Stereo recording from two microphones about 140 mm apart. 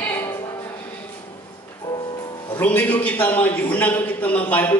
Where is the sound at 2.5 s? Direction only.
10° left (ahead or behind).